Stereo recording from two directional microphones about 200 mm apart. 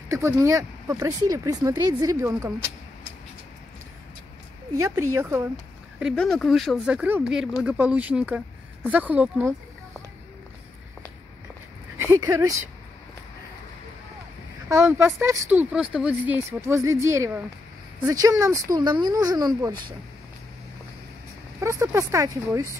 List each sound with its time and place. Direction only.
0.1 s speech: 15° right (ahead or behind)
4.7 s speech: 15° right (ahead or behind)
5.9 s speech: centre (ahead or behind)
12.0 s speech: 15° right (ahead or behind)
14.7 s speech: 15° right (ahead or behind)
21.5 s speech: 15° right (ahead or behind)